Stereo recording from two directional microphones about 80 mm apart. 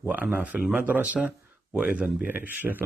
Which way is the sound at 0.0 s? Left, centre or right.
Centre.